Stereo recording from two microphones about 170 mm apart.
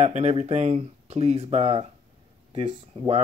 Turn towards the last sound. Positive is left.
turn(degrees=-35)  # may be behind; listen again after turning